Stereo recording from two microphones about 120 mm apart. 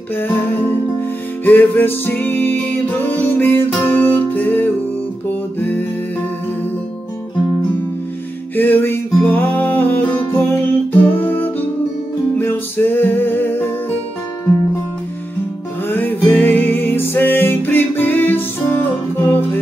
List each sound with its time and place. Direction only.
0.1 s music: 15° left (ahead or behind)
8.5 s music: 15° left (ahead or behind)
15.9 s music: 15° left (ahead or behind)